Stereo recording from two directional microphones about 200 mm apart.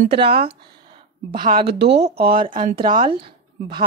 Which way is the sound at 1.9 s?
30° right (ahead or behind).